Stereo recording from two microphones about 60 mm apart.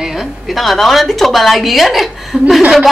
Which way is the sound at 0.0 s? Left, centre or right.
Centre.